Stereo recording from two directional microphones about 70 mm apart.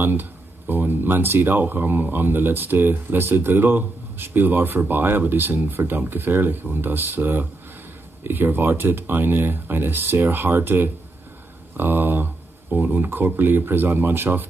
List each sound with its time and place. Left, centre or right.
0.0 s speech: right